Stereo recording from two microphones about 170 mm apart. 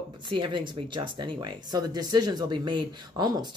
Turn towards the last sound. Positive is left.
turn(degrees=-25)  # may be behind; listen again after turning